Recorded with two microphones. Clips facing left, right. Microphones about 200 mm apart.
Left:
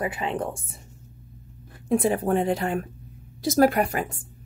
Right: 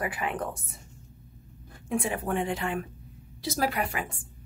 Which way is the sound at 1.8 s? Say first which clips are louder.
Left 7 dB; 35° left (ahead or behind).